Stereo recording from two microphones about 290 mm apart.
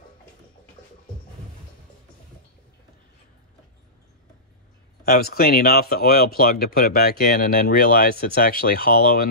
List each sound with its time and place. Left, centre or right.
5.0 s speech: left